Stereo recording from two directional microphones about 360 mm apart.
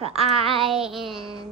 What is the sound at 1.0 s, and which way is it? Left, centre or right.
Speech, centre.